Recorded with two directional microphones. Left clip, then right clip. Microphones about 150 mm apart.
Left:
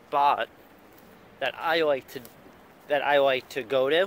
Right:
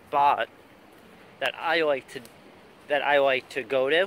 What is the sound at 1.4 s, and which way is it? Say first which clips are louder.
Speech: even; 20° left (ahead or behind).